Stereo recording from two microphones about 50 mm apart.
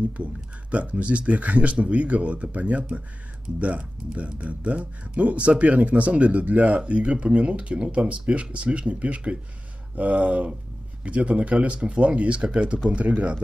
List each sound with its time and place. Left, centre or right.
0.2 s speech: right